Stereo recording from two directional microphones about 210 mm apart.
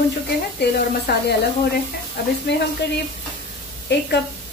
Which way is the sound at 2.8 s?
55° left (ahead or behind).